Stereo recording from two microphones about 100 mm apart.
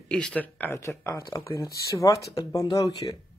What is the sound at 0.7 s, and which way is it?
Speech, 30° left (ahead or behind).